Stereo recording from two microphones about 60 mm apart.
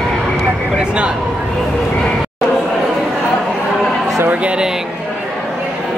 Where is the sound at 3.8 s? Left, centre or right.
Centre.